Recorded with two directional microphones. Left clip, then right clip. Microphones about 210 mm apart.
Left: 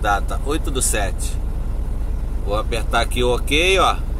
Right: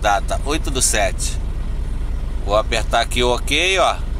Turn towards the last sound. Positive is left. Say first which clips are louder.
# even
turn(degrees=-15)  # may be behind; listen again after turning